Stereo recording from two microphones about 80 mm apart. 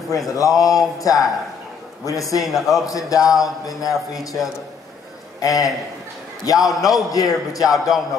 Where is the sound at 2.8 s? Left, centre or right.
Left.